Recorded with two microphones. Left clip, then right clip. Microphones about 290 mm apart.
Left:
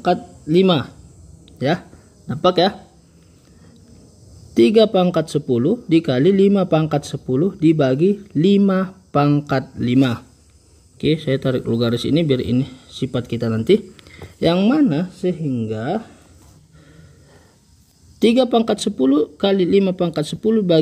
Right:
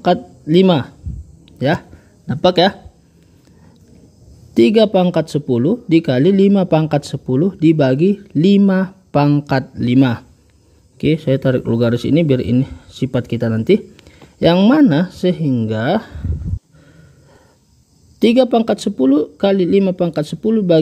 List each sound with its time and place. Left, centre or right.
0.0 s speech: right
1.4 s a sound: centre
2.2 s speech: right
4.6 s speech: centre
11.2 s speech: centre
18.2 s speech: centre